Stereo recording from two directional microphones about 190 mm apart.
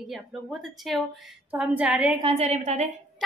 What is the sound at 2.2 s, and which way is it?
Speech, 30° right (ahead or behind).